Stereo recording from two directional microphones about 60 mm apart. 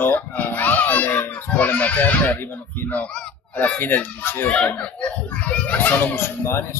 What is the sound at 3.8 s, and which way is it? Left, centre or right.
Speech, left.